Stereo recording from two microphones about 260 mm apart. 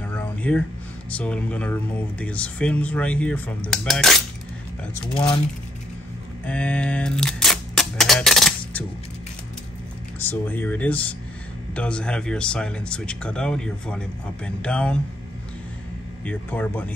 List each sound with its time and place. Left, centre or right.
0.1 s a sound: centre
1.1 s speech: centre
4.9 s speech: centre
6.4 s camera: centre
10.1 s speech: centre
16.3 s speech: centre